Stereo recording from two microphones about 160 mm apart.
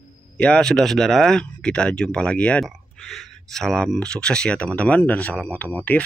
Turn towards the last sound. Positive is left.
turn(degrees=10)  # may be behind; listen again after turning